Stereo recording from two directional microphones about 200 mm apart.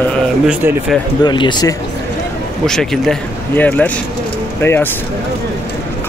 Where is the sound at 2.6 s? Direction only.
Centre (ahead or behind).